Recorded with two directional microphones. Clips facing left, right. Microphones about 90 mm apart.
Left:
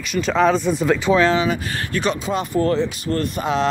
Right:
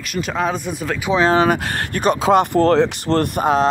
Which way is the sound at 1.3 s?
55° right (ahead or behind).